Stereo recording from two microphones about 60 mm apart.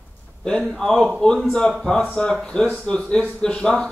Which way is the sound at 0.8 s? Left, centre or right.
Centre.